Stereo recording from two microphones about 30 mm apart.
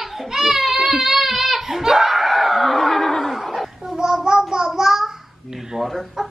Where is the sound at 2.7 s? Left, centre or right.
Centre.